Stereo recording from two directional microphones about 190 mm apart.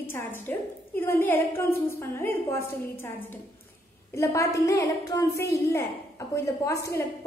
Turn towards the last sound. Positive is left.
turn(degrees=15)  # may be behind; listen again after turning